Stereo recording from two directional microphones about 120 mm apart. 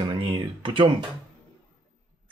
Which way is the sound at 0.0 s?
45° right (ahead or behind).